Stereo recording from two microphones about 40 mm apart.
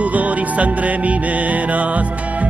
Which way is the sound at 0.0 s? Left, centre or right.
Right.